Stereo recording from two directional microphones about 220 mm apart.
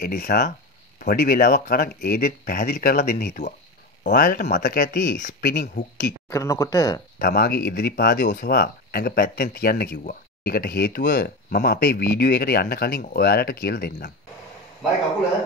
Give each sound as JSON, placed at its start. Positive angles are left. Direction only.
{"t": 0.0, "sound": "speech", "side_deg": 40}
{"t": 6.3, "sound": "speech", "side_deg": 15}
{"t": 7.2, "sound": "speech", "side_deg": 45}